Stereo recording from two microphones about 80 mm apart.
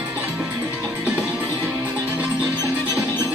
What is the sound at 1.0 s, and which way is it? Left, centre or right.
Music, right.